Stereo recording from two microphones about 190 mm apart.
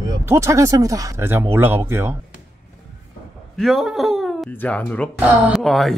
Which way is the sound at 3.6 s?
Centre (ahead or behind).